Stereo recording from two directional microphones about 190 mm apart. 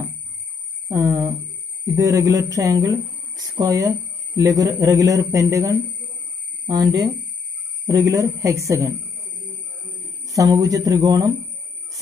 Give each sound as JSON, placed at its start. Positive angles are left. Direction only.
{"t": 0.8, "sound": "speech", "side_deg": -15}
{"t": 10.2, "sound": "speech", "side_deg": -20}